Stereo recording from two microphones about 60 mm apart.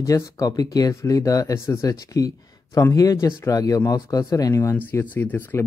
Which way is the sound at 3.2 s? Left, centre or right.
Left.